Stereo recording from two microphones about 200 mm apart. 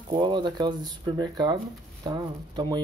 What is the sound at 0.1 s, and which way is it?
Speech, 20° right (ahead or behind).